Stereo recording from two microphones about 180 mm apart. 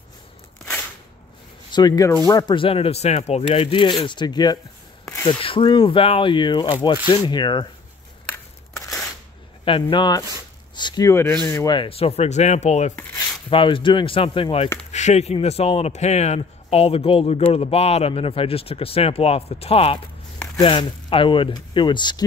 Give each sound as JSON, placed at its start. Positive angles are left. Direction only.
{"t": 1.7, "sound": "speech", "side_deg": 25}
{"t": 5.0, "sound": "a sound", "side_deg": 10}
{"t": 5.4, "sound": "speech", "side_deg": 30}
{"t": 9.7, "sound": "speech", "side_deg": 25}
{"t": 13.5, "sound": "speech", "side_deg": 30}